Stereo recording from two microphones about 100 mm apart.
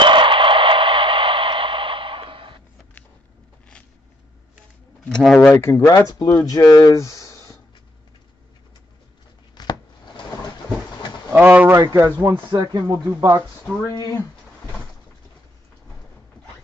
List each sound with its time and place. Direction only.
0.0 s a sound: 55° right (ahead or behind)
5.2 s speech: 10° left (ahead or behind)
5.5 s speech: 25° left (ahead or behind)
5.9 s speech: 35° left (ahead or behind)
9.6 s chopping: 45° left (ahead or behind)
11.3 s speech: 15° right (ahead or behind)
11.7 s speech: 30° right (ahead or behind)
12.3 s speech: 50° right (ahead or behind)
13.8 s speech: 35° left (ahead or behind)